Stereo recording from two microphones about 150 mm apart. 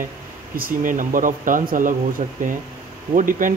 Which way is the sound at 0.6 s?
65° right (ahead or behind).